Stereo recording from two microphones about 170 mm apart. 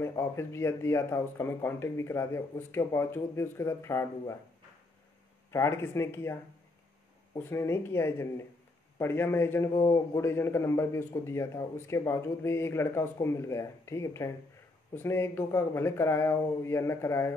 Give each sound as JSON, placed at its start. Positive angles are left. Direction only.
{"t": 0.0, "sound": "a man's voice", "side_deg": 15}
{"t": 5.5, "sound": "a man's voice", "side_deg": 15}
{"t": 7.4, "sound": "a man's voice", "side_deg": 15}